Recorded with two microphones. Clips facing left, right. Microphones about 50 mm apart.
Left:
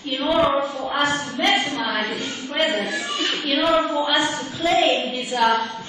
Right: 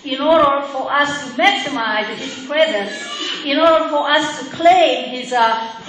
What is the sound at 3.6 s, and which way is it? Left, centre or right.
Female singing, right.